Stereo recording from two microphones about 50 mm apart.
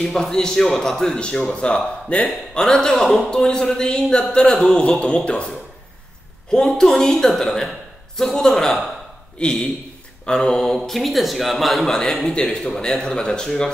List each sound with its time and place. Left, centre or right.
0.0 s a man's voice: centre
2.0 s speech: left
2.5 s a man's voice: centre
5.0 s a man's voice: left
6.5 s a man's voice: centre
10.9 s a man's voice: centre